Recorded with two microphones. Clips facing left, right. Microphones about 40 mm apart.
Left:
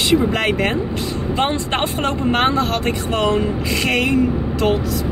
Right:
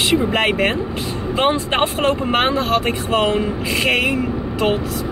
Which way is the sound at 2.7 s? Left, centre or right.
Right.